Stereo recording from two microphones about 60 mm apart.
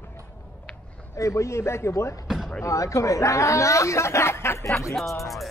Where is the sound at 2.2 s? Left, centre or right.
Centre.